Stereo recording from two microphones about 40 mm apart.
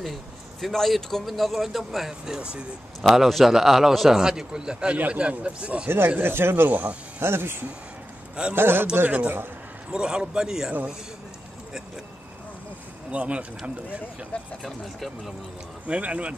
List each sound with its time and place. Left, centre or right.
0.0 s speech: centre
2.2 s a man's voice: centre
3.3 s a man's voice: centre; by 4.9 s right
4.9 s speech: right
5.4 s speech: right
5.9 s speech: right
8.5 s a man's voice: right
8.9 s speech: right
9.8 s speech: right
13.1 s speech: right
14.6 s speech: centre
15.9 s speech: right